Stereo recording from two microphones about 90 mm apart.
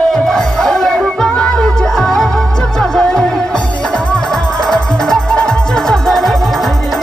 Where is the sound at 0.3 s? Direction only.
5° left (ahead or behind).